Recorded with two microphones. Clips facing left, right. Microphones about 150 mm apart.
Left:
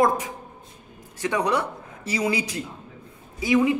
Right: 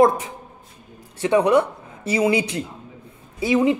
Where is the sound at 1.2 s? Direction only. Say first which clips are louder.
Right 7 dB; 25° right (ahead or behind).